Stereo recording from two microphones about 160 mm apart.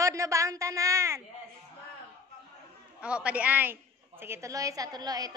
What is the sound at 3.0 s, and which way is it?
A woman's voice, 5° right (ahead or behind).